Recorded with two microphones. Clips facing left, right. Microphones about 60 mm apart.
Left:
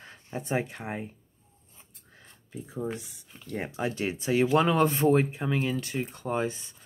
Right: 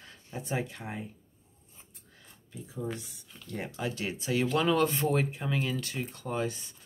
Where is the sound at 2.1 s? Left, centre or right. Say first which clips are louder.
Left 5 dB; left.